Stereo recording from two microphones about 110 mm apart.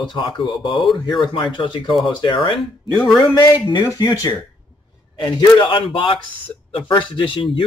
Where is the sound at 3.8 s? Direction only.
30° left (ahead or behind).